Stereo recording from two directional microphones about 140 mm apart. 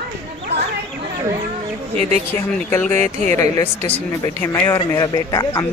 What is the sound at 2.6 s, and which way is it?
A woman's voice, 15° left (ahead or behind).